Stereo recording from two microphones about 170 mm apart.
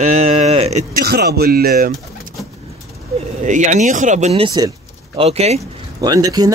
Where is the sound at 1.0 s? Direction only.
65° right (ahead or behind).